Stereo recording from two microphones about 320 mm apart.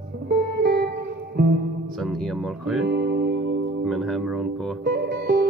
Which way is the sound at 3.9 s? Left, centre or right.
Centre.